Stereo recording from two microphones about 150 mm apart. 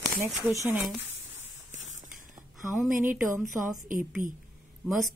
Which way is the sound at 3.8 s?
65° right (ahead or behind).